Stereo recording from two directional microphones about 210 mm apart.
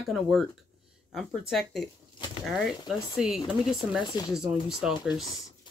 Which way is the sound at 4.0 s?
20° left (ahead or behind).